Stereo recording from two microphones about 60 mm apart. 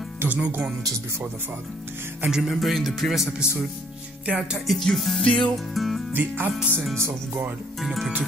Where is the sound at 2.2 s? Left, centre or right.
Centre.